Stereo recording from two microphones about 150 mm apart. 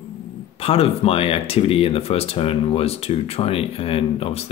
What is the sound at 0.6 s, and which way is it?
Speech, 40° left (ahead or behind).